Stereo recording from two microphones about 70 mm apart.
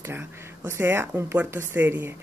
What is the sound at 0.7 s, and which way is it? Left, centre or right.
A woman's voice, right.